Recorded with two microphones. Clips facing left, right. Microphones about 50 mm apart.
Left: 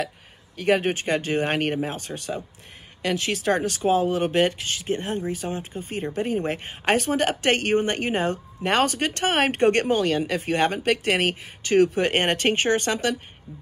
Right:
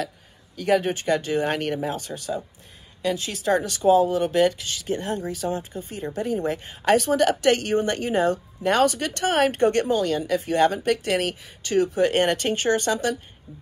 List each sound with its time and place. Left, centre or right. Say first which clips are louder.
0.6 s a woman's voice: even; left
3.4 s speech: right 3 dB; left